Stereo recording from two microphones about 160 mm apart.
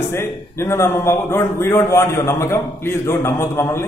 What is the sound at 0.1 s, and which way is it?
A man's voice, 15° left (ahead or behind).